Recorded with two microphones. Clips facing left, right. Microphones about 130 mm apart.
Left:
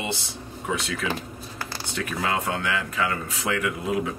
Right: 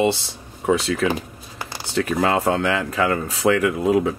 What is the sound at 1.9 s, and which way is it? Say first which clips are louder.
Speech: right 8 dB; 35° right (ahead or behind).